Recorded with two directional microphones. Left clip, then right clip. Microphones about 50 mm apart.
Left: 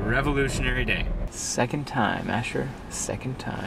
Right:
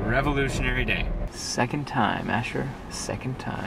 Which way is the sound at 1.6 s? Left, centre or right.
Left.